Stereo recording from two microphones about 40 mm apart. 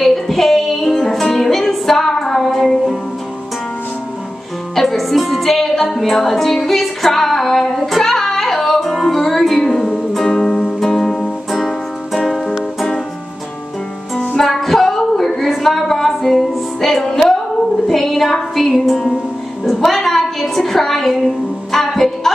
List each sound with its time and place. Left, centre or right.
0.0 s music: centre
4.7 s music: centre
11.5 s music: centre
12.2 s music: centre
14.3 s music: centre
19.6 s a sound: centre
21.7 s music: centre